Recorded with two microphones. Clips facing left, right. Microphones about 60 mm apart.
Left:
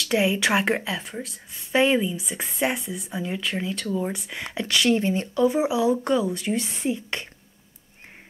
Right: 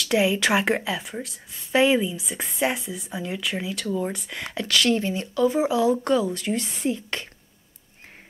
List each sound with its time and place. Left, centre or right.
0.0 s speech: centre
5.0 s speech: left
5.6 s speech: centre